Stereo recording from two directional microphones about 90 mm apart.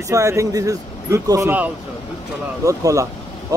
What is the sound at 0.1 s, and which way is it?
Speech, 35° right (ahead or behind).